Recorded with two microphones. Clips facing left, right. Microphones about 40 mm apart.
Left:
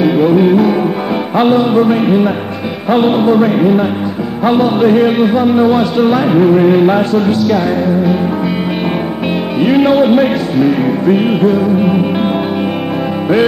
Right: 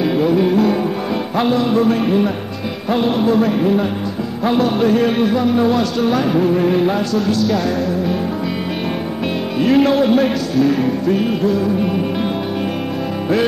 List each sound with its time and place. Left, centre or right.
0.1 s music: left
1.3 s speech: left
9.6 s speech: centre